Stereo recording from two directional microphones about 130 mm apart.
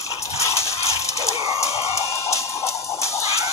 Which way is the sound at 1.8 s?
25° left (ahead or behind).